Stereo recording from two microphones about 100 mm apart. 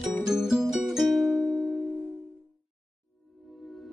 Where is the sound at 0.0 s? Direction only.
5° right (ahead or behind).